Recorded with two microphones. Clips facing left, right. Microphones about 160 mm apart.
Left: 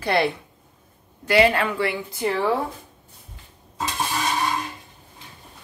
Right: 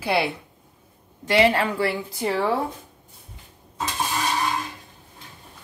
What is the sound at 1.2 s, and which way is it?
Speech, 30° right (ahead or behind).